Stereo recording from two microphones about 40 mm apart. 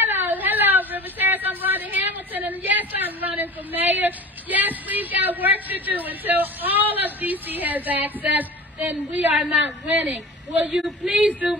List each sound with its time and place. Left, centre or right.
0.0 s speech: right
10.7 s speech: centre
11.1 s speech: right